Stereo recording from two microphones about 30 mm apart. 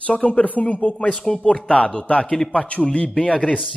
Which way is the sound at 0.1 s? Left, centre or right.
Left.